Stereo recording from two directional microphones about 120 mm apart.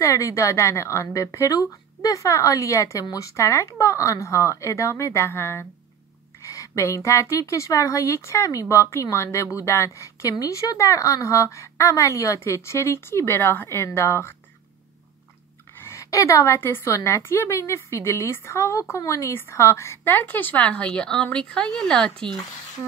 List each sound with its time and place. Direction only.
0.0 s a woman's voice: 25° left (ahead or behind)
15.8 s a woman's voice: 25° left (ahead or behind); by 22.1 s 5° left (ahead or behind)